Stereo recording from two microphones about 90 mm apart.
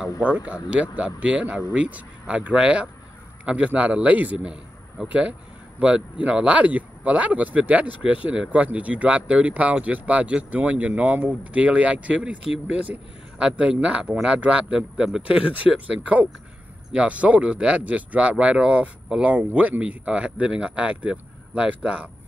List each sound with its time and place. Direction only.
0.7 s speech: 15° right (ahead or behind)